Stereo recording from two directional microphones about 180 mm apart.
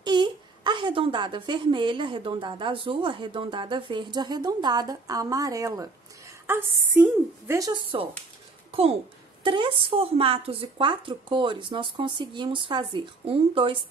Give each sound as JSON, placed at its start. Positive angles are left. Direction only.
{"t": 0.0, "sound": "a woman's voice", "side_deg": -25}
{"t": 9.4, "sound": "a woman's voice", "side_deg": -30}